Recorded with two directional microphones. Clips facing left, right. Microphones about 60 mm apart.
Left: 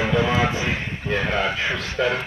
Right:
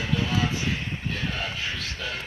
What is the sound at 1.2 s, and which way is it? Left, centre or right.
Speech, left.